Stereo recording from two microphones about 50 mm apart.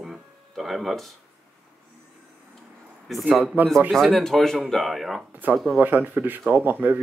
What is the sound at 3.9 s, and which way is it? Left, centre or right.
Speech, centre.